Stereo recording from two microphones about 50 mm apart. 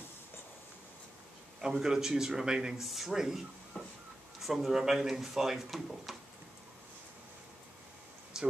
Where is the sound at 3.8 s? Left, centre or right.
Left.